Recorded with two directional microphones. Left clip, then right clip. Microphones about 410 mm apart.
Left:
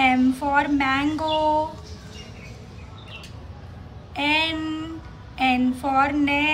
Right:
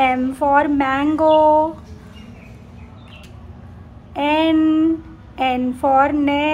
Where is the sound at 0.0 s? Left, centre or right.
Centre.